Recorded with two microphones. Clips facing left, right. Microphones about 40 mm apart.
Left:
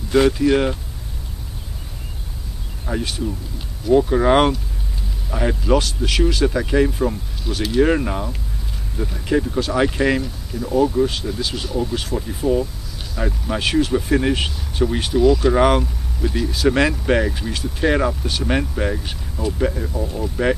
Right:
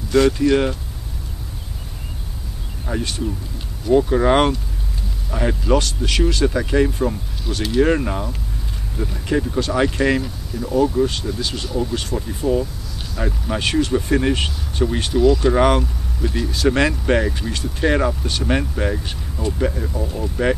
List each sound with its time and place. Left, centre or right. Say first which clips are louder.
0.1 s speech: even; centre
2.9 s speech: even; centre